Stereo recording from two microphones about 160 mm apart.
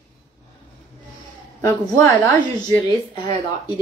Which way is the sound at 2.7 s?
25° left (ahead or behind).